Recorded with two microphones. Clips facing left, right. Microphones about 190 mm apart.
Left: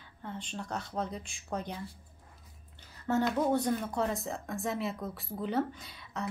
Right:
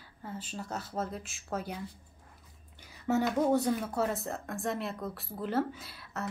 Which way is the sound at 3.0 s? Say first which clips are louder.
Right 1 dB; 10° right (ahead or behind).